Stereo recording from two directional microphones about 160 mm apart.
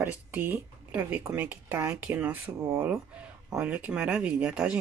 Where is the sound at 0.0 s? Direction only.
15° right (ahead or behind).